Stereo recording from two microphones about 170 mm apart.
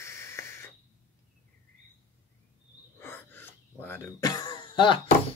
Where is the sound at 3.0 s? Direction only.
15° left (ahead or behind).